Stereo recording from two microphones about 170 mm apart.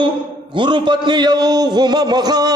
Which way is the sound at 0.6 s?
25° right (ahead or behind).